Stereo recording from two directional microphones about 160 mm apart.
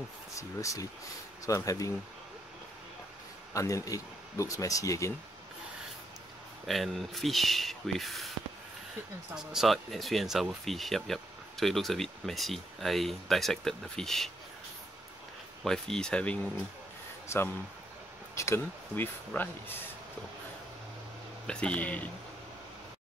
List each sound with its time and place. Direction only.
0.4 s speech: 20° left (ahead or behind)
3.5 s speech: 20° left (ahead or behind)
6.6 s speech: centre (ahead or behind)
9.3 s speech: 5° right (ahead or behind)
15.6 s speech: 5° left (ahead or behind)
18.3 s speech: 15° left (ahead or behind)
21.5 s speech: 5° left (ahead or behind)